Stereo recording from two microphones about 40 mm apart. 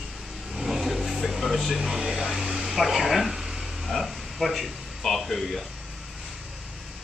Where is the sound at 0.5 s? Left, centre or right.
Centre.